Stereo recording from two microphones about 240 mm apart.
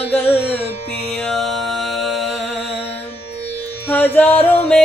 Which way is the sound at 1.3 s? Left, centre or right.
Centre.